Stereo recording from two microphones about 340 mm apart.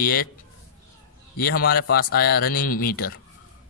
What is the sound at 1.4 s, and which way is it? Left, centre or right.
A man's voice, left.